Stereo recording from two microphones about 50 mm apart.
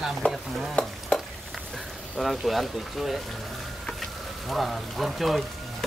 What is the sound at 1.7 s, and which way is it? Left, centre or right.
Speech, centre.